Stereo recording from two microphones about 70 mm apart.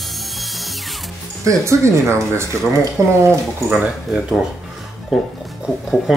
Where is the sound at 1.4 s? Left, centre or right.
Right.